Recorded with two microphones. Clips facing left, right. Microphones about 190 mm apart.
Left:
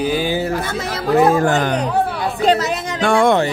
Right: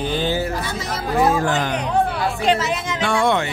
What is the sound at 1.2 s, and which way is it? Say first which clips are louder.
Speech: left 2 dB; 50° left (ahead or behind).